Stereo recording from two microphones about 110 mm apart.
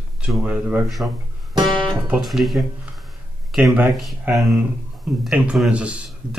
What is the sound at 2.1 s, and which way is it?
Speech, 5° right (ahead or behind).